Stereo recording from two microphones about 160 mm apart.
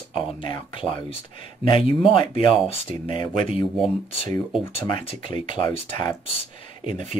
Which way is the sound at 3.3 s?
50° right (ahead or behind).